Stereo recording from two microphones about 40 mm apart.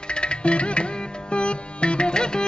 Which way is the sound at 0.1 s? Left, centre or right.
Left.